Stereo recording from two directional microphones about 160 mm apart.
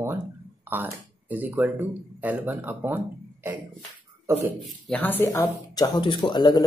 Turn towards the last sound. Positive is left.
turn(degrees=25)  # may be behind; listen again after turning